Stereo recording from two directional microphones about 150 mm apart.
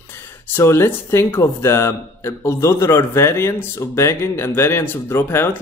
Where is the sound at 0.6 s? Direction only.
15° left (ahead or behind).